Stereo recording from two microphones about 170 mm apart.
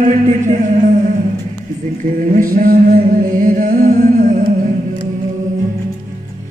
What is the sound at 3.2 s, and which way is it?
Music, 50° right (ahead or behind).